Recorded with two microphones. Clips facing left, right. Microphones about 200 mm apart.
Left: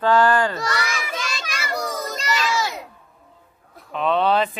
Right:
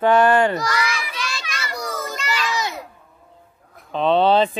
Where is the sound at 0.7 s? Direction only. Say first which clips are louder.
Right 1 dB; 45° left (ahead or behind).